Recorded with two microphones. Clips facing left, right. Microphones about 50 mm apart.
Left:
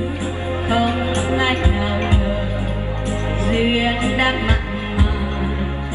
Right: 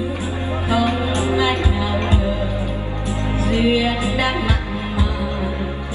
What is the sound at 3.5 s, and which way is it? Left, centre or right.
Music, left.